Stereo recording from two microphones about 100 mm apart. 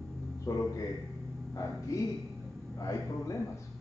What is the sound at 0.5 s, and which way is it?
A man's voice, 35° left (ahead or behind).